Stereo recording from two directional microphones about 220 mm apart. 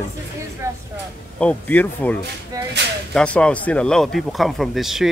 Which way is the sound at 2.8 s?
50° right (ahead or behind).